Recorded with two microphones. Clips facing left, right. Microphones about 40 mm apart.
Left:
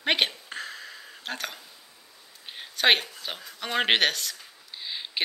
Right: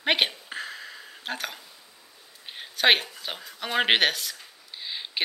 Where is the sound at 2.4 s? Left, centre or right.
Centre.